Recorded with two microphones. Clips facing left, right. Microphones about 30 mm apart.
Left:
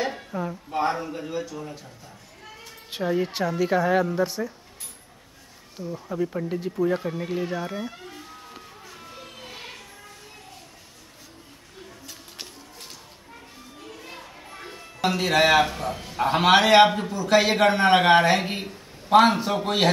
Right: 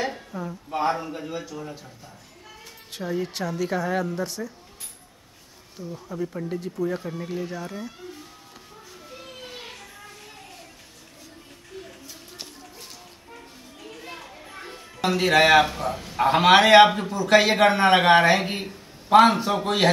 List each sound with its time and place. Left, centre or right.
0.1 s a sound: centre
0.7 s a man's voice: centre
2.9 s speech: centre
5.8 s speech: centre
9.5 s music: centre
14.3 s a sound: centre
15.7 s a man's voice: centre